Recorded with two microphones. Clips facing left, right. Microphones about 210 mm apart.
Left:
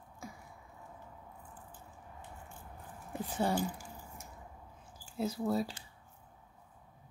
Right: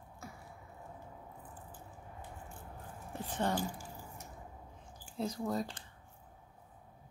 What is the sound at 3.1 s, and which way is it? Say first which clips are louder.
Speech: left 2 dB; 10° left (ahead or behind).